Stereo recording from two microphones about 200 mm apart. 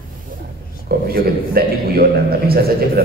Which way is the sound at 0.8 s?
50° right (ahead or behind).